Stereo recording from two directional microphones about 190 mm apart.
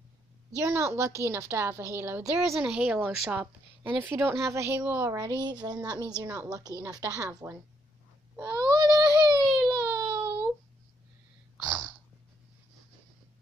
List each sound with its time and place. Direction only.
0.6 s a woman's voice: 15° right (ahead or behind)
8.4 s a sound: 20° right (ahead or behind)
9.4 s baby cry: 5° right (ahead or behind)
9.7 s baby cry: 20° right (ahead or behind)